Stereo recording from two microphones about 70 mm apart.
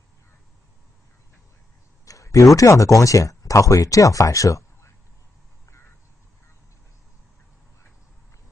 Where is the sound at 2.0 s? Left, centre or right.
Left.